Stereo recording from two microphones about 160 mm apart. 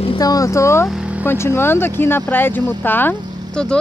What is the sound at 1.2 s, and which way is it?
Speech, 15° left (ahead or behind).